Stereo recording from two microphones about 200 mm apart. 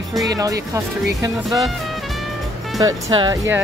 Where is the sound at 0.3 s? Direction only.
15° right (ahead or behind).